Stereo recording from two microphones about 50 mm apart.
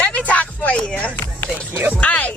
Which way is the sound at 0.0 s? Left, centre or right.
Left.